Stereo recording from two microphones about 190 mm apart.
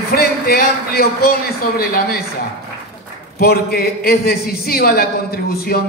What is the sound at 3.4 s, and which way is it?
A man's voice, 55° left (ahead or behind).